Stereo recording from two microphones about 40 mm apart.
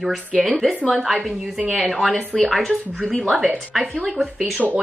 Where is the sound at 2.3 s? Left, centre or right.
Centre.